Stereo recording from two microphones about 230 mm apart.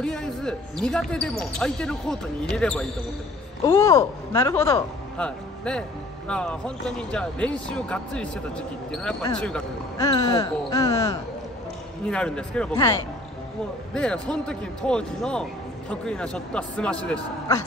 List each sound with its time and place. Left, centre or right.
0.0 s speech: centre
3.6 s speech: centre
9.9 s speech: centre
12.1 s speech: centre
13.9 s speech: centre